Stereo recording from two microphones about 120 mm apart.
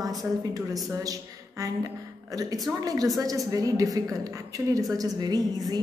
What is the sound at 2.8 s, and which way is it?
A woman's voice, 30° right (ahead or behind).